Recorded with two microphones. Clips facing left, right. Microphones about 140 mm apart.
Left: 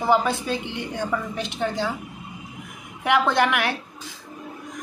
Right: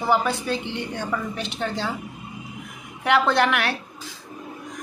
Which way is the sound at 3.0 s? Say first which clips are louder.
Right 1 dB; 15° left (ahead or behind).